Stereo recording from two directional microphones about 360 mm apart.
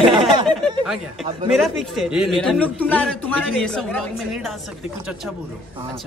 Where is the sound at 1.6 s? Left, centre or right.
Centre.